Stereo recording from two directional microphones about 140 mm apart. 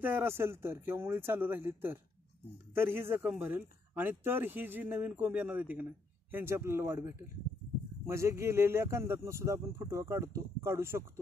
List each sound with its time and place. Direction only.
0.0 s speech: 15° right (ahead or behind)